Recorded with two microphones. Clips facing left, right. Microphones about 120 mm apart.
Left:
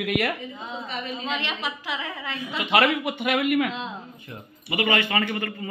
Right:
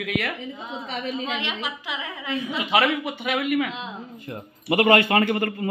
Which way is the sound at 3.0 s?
Centre (ahead or behind).